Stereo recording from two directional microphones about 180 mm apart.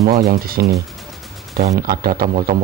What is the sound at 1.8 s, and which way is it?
Speech, 55° right (ahead or behind).